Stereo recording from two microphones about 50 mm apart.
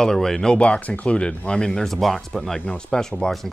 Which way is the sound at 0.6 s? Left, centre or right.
Left.